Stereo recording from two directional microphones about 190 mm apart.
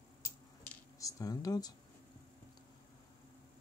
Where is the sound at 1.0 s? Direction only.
15° left (ahead or behind).